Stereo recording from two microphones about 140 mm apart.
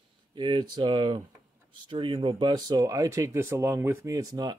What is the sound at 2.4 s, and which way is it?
Speech, 30° right (ahead or behind).